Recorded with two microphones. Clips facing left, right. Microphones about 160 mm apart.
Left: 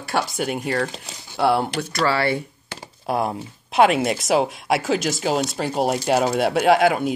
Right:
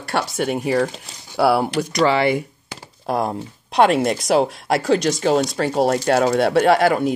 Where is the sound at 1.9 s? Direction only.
20° right (ahead or behind).